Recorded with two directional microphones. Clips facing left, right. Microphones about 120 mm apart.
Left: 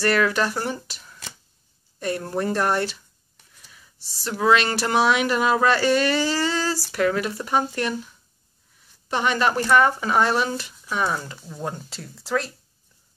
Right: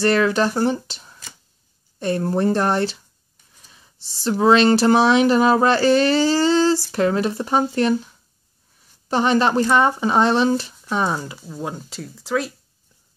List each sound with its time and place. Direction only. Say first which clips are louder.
0.0 s speech: right 4 dB; 25° right (ahead or behind)
9.1 s speech: right 4 dB; 30° right (ahead or behind)
11.1 s speech: right 3 dB; 20° right (ahead or behind)
11.4 s speech: right 2 dB; 5° right (ahead or behind)